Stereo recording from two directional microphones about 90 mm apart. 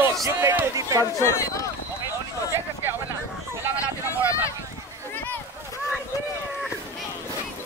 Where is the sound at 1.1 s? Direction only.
30° left (ahead or behind).